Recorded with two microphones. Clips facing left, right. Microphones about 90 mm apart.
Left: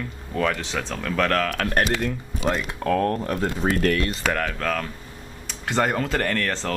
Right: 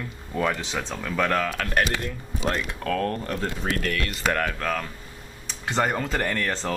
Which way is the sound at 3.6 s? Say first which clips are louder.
Left 7 dB; 40° left (ahead or behind).